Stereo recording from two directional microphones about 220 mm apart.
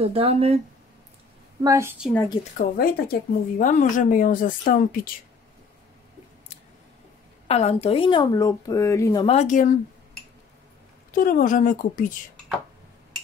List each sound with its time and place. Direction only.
0.0 s speech: 25° right (ahead or behind)
1.6 s a woman's voice: 15° right (ahead or behind)
2.5 s speech: 40° left (ahead or behind)
7.4 s speech: 30° left (ahead or behind); by 9.2 s 15° left (ahead or behind)
9.2 s speech: 30° left (ahead or behind)
11.1 s speech: 40° left (ahead or behind)